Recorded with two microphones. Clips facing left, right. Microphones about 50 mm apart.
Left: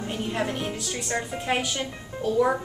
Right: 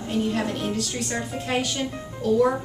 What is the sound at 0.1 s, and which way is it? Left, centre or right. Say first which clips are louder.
A woman's voice: right 4 dB; centre.